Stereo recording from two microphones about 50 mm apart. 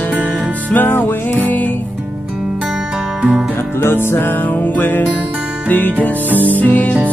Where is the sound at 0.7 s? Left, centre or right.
Left.